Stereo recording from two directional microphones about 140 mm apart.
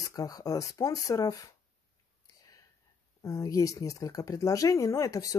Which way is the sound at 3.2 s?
25° left (ahead or behind).